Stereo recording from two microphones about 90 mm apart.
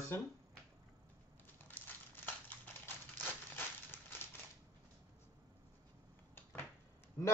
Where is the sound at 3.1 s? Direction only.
25° left (ahead or behind).